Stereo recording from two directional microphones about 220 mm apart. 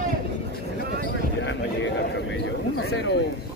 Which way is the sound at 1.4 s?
55° left (ahead or behind).